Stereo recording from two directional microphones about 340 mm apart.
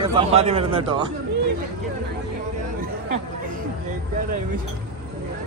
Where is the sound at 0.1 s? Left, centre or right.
Centre.